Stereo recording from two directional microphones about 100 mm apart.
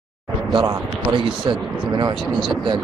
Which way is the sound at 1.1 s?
55° right (ahead or behind).